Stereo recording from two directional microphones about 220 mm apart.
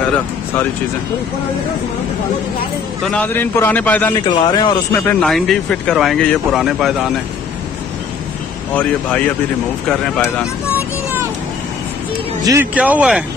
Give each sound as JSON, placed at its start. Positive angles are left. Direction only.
{"t": 3.1, "sound": "a man's voice", "side_deg": 10}
{"t": 4.3, "sound": "speech", "side_deg": 20}
{"t": 4.9, "sound": "speech", "side_deg": 0}
{"t": 8.7, "sound": "speech", "side_deg": 5}
{"t": 12.4, "sound": "speech", "side_deg": -10}